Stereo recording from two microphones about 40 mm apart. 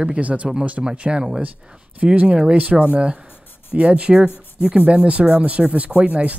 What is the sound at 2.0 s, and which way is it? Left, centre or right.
Speech, right.